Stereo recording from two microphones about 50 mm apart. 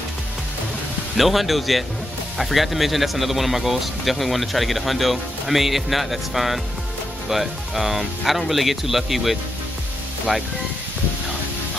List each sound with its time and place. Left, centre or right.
1.1 s speech: centre